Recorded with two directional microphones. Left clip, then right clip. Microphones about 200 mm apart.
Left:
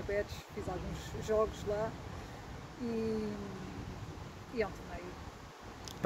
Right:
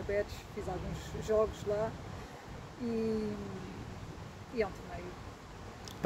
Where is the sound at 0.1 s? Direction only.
Centre (ahead or behind).